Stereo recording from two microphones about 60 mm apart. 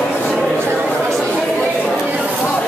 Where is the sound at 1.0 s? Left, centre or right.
Centre.